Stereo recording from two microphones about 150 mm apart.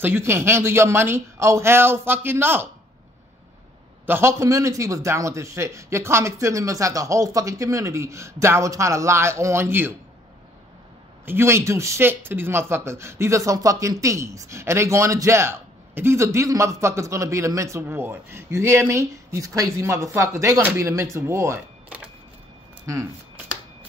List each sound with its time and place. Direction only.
0.0 s speech: 15° right (ahead or behind)
4.0 s speech: 15° right (ahead or behind)
11.2 s speech: 15° right (ahead or behind)